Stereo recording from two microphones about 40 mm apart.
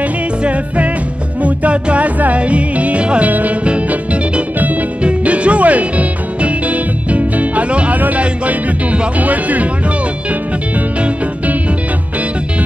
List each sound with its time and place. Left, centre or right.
0.4 s music: right
3.3 s speech: right
3.6 s music: right